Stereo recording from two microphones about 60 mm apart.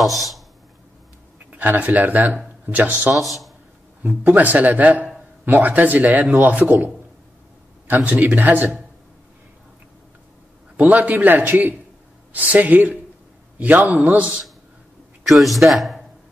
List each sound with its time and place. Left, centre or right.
0.0 s speech: centre
1.5 s speech: right
3.3 s speech: centre
4.0 s speech: right
7.9 s speech: right
10.9 s speech: right
15.2 s a man's voice: centre